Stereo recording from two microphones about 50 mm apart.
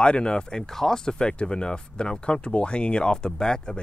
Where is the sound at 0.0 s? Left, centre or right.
Centre.